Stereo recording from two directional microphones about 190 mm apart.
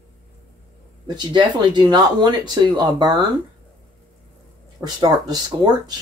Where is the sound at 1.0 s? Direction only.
25° right (ahead or behind).